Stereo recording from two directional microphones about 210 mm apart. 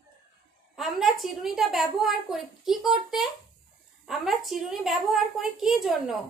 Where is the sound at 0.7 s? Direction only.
Centre (ahead or behind).